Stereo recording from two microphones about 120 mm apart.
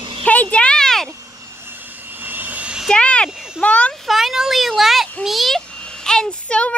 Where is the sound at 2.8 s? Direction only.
10° left (ahead or behind).